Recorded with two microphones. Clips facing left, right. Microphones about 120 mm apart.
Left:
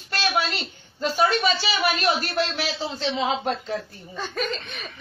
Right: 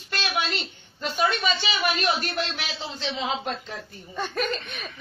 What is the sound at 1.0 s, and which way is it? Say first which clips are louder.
Speech: left 4 dB; 40° left (ahead or behind).